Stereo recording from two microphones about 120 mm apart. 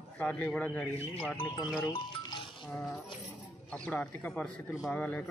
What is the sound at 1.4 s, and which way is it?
Speech, 35° left (ahead or behind).